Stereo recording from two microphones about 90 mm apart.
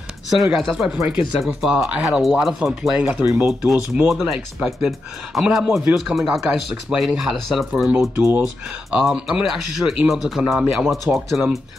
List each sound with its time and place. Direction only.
0.3 s speech: centre (ahead or behind)
3.0 s speech: 15° right (ahead or behind)
8.2 s speech: 30° right (ahead or behind)
8.9 s speech: 10° right (ahead or behind)